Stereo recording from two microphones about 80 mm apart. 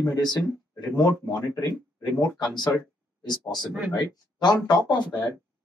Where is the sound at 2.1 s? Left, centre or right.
Left.